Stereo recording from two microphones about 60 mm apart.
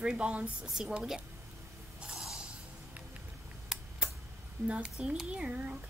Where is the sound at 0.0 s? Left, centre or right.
Centre.